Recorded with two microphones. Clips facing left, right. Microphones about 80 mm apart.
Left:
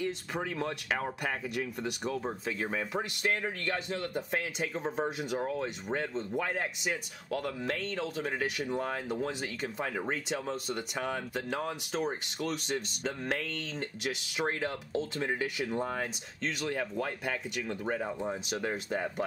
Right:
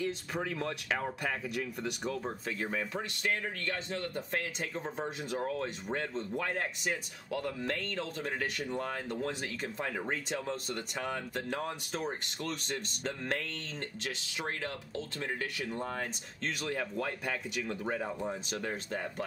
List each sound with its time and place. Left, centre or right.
0.0 s speech: centre
14.6 s speech: centre